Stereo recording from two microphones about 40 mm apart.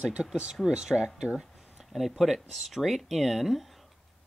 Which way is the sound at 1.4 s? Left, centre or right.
Centre.